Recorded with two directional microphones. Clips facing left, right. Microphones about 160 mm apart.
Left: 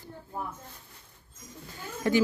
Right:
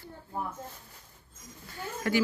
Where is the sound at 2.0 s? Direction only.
20° left (ahead or behind).